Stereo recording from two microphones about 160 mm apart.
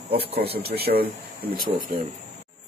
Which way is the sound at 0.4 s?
80° right.